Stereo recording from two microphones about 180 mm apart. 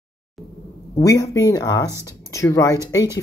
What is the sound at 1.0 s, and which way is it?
Speech, 20° left (ahead or behind).